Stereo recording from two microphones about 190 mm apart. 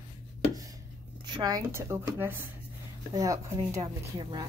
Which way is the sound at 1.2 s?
20° right (ahead or behind).